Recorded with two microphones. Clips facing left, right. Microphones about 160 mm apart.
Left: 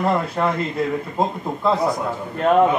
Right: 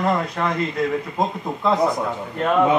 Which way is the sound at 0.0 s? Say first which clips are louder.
Left 2 dB; 5° left (ahead or behind).